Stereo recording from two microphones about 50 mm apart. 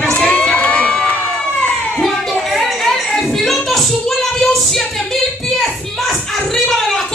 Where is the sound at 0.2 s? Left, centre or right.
Centre.